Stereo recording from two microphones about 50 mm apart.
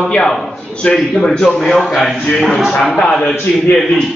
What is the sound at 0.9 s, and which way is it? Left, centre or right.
Speech, centre.